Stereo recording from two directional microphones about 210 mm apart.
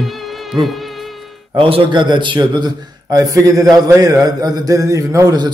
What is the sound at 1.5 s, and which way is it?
A man's voice, 25° right (ahead or behind).